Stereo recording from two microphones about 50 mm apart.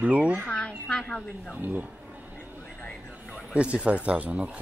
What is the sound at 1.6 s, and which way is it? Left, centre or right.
Speech, right.